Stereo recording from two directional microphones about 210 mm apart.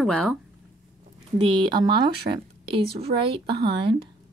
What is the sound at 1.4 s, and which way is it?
Speech, 20° right (ahead or behind).